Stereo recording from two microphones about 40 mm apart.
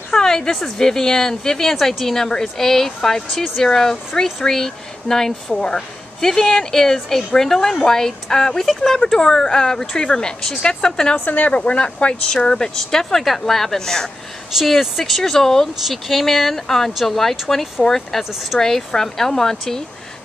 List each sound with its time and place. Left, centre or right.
0.2 s a woman's voice: centre
11.2 s speech: left
12.4 s speech: centre
14.6 s speech: centre